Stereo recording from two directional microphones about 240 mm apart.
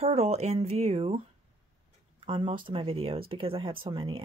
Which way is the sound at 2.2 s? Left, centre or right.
Right.